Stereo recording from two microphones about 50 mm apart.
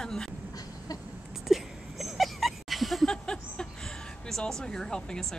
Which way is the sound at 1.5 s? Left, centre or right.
Centre.